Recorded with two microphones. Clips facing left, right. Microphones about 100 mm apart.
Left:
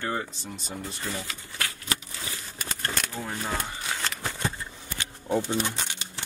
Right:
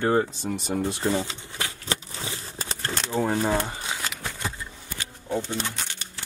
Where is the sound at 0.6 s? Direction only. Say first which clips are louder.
Right 10 dB; 60° right (ahead or behind).